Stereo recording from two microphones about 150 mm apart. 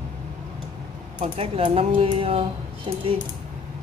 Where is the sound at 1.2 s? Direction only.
40° right (ahead or behind).